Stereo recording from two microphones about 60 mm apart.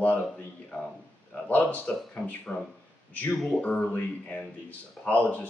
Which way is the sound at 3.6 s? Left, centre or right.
Left.